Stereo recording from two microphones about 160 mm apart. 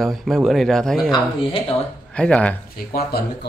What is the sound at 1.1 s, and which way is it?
Speech, 30° left (ahead or behind).